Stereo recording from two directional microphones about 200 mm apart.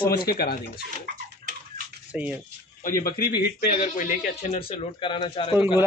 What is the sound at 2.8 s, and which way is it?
Speech, 45° left (ahead or behind).